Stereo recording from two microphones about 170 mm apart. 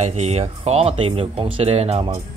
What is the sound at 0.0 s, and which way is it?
Speech, 40° right (ahead or behind).